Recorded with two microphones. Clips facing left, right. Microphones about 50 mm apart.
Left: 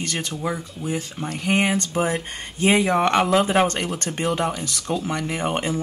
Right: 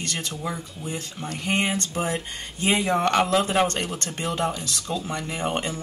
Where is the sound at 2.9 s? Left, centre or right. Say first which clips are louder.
Left 2 dB; left.